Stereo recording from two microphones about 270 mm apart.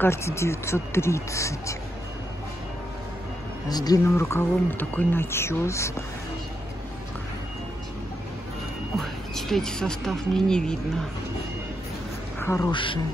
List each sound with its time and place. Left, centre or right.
0.0 s speech: centre
3.6 s speech: centre
9.0 s speech: centre
12.4 s a sound: centre
12.7 s speech: centre